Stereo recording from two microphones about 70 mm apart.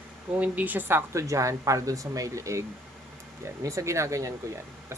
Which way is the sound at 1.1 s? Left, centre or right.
Right.